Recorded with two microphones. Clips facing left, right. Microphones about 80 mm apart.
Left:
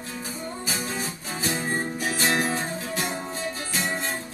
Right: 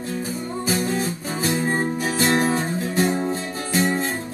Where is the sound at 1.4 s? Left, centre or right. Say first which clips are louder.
Right 5 dB; right.